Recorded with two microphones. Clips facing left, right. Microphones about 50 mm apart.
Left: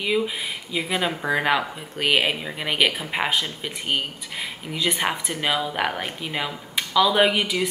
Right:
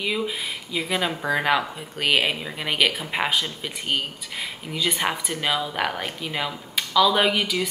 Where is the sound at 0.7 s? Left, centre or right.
Centre.